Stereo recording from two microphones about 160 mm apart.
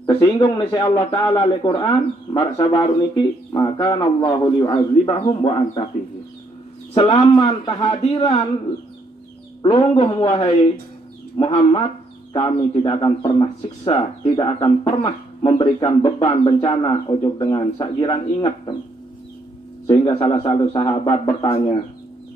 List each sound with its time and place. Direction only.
0.0 s a man's voice: 20° left (ahead or behind)
6.9 s a man's voice: 40° left (ahead or behind)
7.3 s a man's voice: 25° left (ahead or behind)
8.0 s speech: 40° left (ahead or behind)
9.6 s speech: 35° left (ahead or behind)
19.9 s speech: 35° left (ahead or behind)